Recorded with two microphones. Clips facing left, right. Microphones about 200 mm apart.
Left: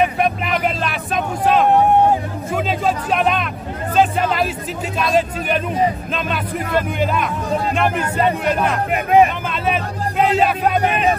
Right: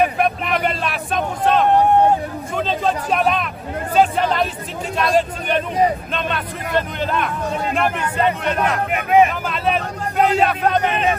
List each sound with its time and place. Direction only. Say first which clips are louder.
0.0 s vehicle: even; centre (ahead or behind)
3.9 s music: even; 5° left (ahead or behind)
4.9 s a sound: even; centre (ahead or behind)
6.1 s speech: left 2 dB; 5° left (ahead or behind)
8.9 s speech: left 1 dB; 35° left (ahead or behind)
9.5 s speech: even; centre (ahead or behind)